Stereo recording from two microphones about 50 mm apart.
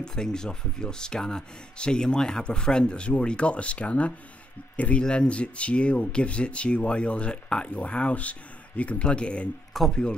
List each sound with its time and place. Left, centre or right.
0.0 s speech: centre; by 5.0 s left
5.0 s speech: centre
9.8 s speech: centre